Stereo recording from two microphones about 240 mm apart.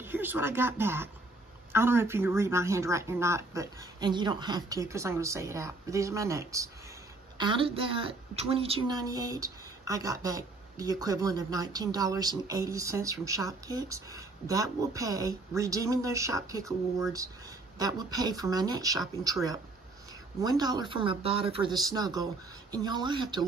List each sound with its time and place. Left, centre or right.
0.0 s a woman's voice: centre
20.4 s a woman's voice: centre